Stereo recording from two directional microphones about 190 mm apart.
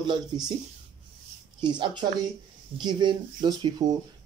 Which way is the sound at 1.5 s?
25° right (ahead or behind).